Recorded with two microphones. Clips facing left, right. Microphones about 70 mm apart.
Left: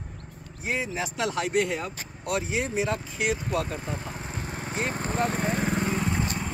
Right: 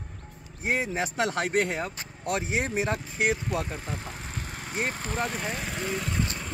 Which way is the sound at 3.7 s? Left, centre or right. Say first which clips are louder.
Left 2 dB; left.